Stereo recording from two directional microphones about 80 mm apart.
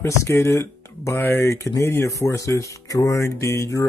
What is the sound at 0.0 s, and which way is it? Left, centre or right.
Speech, left.